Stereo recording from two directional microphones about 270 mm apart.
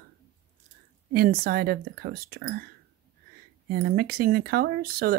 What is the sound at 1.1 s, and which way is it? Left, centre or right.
Speech, right.